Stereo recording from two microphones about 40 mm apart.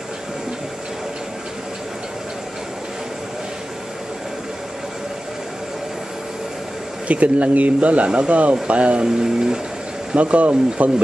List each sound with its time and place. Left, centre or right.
7.1 s speech: right
9.0 s speech: centre
10.1 s speech: right